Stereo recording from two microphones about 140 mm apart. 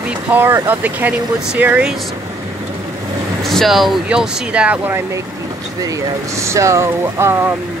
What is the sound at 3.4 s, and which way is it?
Speech, centre (ahead or behind).